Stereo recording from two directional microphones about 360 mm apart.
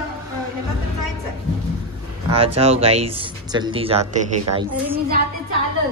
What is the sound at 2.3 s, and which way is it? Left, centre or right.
Speech, centre.